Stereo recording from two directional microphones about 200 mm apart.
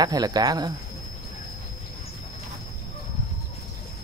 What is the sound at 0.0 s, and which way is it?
Speech, 20° right (ahead or behind).